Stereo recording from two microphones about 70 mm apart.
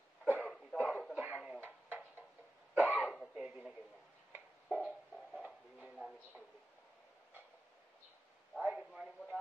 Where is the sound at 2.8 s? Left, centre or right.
Right.